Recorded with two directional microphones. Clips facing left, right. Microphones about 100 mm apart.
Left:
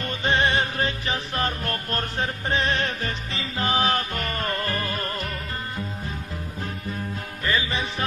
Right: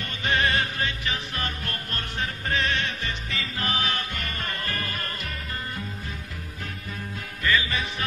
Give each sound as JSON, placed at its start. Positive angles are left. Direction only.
{"t": 0.0, "sound": "music", "side_deg": 30}
{"t": 7.4, "sound": "music", "side_deg": 35}